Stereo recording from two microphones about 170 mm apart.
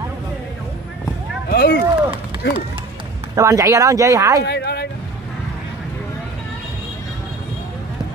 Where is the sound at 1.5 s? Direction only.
70° left (ahead or behind).